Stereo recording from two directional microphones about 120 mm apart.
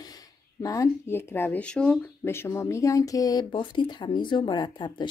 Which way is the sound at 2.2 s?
20° left (ahead or behind).